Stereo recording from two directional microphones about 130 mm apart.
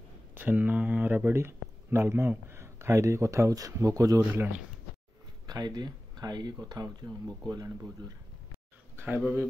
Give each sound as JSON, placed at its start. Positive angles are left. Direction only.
{"t": 0.3, "sound": "speech", "side_deg": -15}
{"t": 4.3, "sound": "speech", "side_deg": -15}
{"t": 5.5, "sound": "speech", "side_deg": -35}
{"t": 8.9, "sound": "speech", "side_deg": -15}